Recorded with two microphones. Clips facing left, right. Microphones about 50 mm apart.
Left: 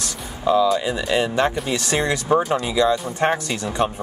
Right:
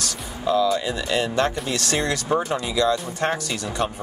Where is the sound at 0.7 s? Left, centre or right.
Centre.